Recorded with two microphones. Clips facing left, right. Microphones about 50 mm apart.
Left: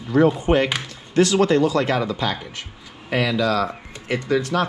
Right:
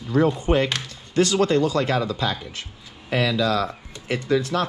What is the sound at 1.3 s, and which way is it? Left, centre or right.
Speech, left.